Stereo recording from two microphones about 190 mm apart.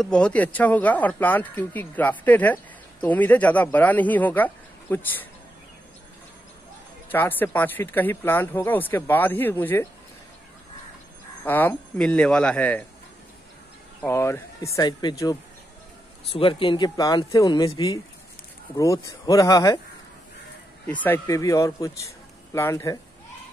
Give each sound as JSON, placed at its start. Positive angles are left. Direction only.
{"t": 0.0, "sound": "speech", "side_deg": 5}
{"t": 7.1, "sound": "speech", "side_deg": 10}
{"t": 11.4, "sound": "speech", "side_deg": 10}
{"t": 14.0, "sound": "speech", "side_deg": 15}
{"t": 21.0, "sound": "speech", "side_deg": 15}